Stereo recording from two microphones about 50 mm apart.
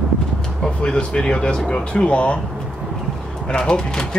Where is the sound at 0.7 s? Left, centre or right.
Centre.